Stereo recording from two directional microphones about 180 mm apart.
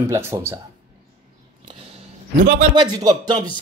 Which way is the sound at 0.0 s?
15° right (ahead or behind).